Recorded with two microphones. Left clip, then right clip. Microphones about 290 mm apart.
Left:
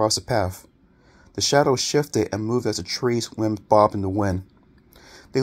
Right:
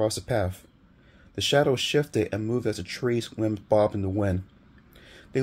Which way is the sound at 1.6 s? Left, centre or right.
Centre.